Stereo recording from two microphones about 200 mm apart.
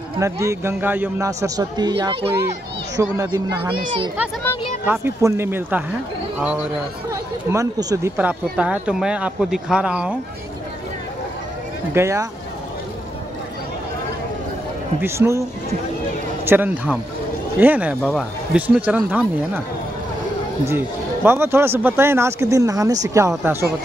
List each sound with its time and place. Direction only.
0.2 s a man's voice: 15° right (ahead or behind)
4.8 s a man's voice: 10° right (ahead or behind)
7.1 s speech: 15° right (ahead or behind)
11.9 s a man's voice: 15° right (ahead or behind)
15.0 s a man's voice: 10° right (ahead or behind)
16.4 s a man's voice: 10° right (ahead or behind)
20.6 s a man's voice: 10° right (ahead or behind)